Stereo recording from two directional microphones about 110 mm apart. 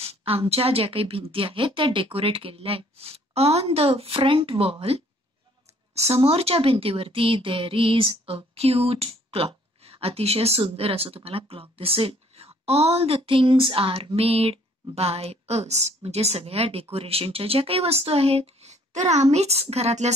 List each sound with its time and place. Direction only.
0.0 s a woman's voice: 60° right (ahead or behind)
5.9 s speech: 70° right (ahead or behind); by 19.2 s 90° right
19.3 s speech: 75° right (ahead or behind)